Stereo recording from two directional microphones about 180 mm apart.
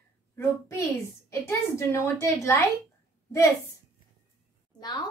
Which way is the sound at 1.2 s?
15° left (ahead or behind).